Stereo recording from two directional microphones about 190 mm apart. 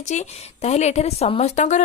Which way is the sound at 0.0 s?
35° left (ahead or behind).